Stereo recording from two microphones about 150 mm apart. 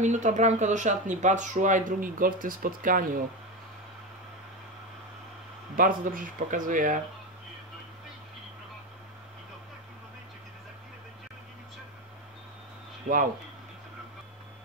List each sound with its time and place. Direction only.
0.0 s speech: 55° right (ahead or behind)
5.8 s speech: 65° right (ahead or behind)